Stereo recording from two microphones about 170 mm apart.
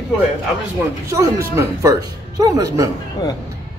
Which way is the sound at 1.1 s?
20° right (ahead or behind).